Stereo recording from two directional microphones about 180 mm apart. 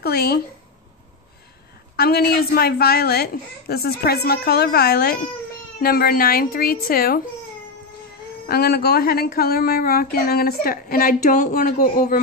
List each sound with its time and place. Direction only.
0.0 s a woman's voice: 65° left (ahead or behind)
2.0 s a woman's voice: 60° left (ahead or behind)
8.5 s a woman's voice: 60° left (ahead or behind)